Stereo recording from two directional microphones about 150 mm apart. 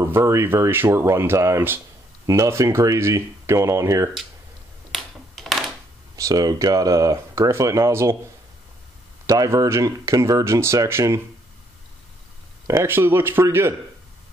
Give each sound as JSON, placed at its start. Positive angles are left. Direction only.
{"t": 0.0, "sound": "speech", "side_deg": -20}
{"t": 4.9, "sound": "a sound", "side_deg": 0}
{"t": 6.1, "sound": "speech", "side_deg": -25}
{"t": 9.2, "sound": "speech", "side_deg": -20}
{"t": 12.6, "sound": "speech", "side_deg": -15}